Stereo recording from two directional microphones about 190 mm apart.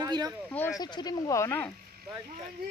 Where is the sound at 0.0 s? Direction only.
20° right (ahead or behind).